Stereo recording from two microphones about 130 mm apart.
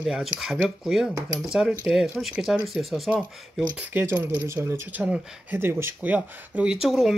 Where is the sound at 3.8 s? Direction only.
15° right (ahead or behind).